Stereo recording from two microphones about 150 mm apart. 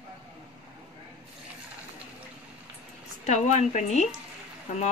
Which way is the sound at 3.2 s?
50° left (ahead or behind).